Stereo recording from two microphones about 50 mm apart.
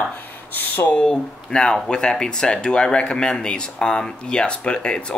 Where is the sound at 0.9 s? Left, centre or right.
Centre.